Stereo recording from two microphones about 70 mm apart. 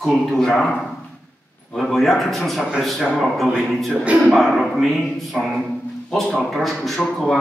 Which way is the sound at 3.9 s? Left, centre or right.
Centre.